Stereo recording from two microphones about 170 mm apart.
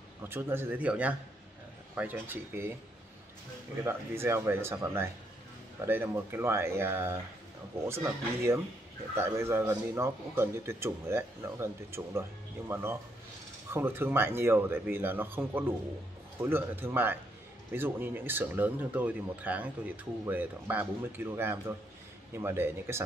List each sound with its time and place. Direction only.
0.2 s a man's voice: 10° right (ahead or behind)
3.8 s a man's voice: 15° right (ahead or behind)